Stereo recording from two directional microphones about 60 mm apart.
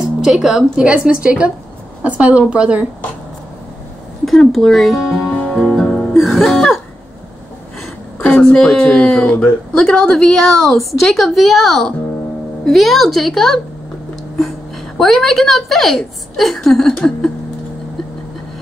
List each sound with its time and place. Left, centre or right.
0.0 s a woman's voice: centre; by 2.9 s right
4.3 s speech: centre
5.7 s music: centre
6.1 s music: centre
8.2 s a woman's voice: centre
15.0 s a woman's voice: centre